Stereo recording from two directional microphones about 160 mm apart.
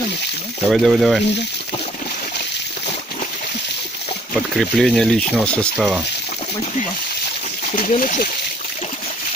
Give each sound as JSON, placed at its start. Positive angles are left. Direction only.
{"t": 0.7, "sound": "speech", "side_deg": 0}
{"t": 4.6, "sound": "speech", "side_deg": 0}
{"t": 5.8, "sound": "speech", "side_deg": -5}
{"t": 7.7, "sound": "speech", "side_deg": 60}